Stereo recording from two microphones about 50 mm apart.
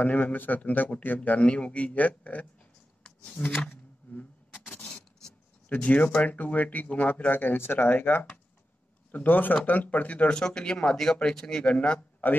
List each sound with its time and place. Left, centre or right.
0.0 s speech: left
1.4 s a man's voice: left
3.0 s a sound: left
4.1 s a sound: left
5.7 s speech: left
7.2 s speech: left
10.3 s speech: centre
12.2 s speech: left